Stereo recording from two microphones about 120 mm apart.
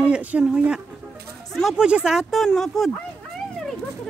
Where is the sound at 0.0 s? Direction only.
10° right (ahead or behind).